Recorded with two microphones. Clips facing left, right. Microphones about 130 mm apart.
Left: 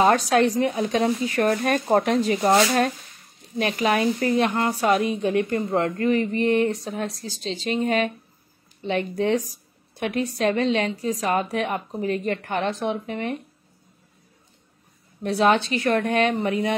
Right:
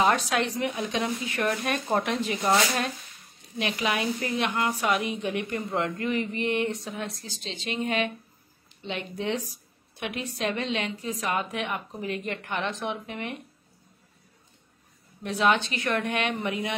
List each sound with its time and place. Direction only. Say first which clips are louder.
0.0 s a woman's voice: left 6 dB; 40° left (ahead or behind)
3.5 s a woman's voice: left 6 dB; 45° left (ahead or behind)
15.2 s a woman's voice: left 5 dB; 35° left (ahead or behind)